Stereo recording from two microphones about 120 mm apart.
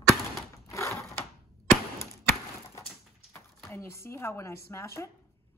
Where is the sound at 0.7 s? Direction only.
25° left (ahead or behind).